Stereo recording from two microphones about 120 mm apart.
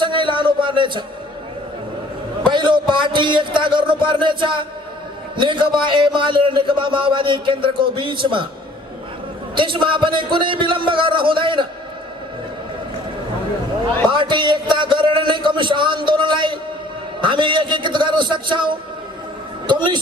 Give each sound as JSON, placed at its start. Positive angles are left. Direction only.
{"t": 0.0, "sound": "a sound", "side_deg": -40}
{"t": 2.4, "sound": "a man's voice", "side_deg": -40}
{"t": 9.6, "sound": "a man's voice", "side_deg": -40}
{"t": 14.1, "sound": "a woman's voice", "side_deg": -40}